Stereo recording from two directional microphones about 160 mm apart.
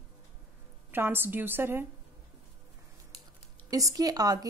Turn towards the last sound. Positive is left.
turn(degrees=-25)  # may be behind; listen again after turning